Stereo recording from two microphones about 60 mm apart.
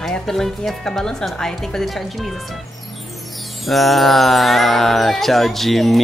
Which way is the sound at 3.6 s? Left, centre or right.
Centre.